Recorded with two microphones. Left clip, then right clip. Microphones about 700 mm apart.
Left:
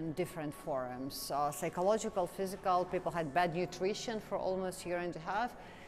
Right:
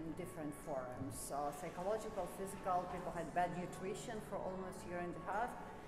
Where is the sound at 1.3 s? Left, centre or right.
Left.